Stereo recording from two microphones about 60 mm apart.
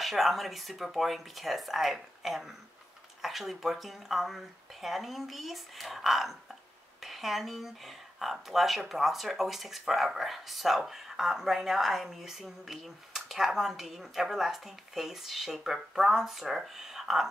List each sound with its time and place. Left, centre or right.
0.0 s speech: centre